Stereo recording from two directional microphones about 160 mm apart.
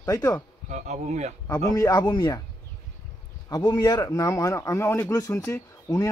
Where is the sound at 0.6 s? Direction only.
45° right (ahead or behind).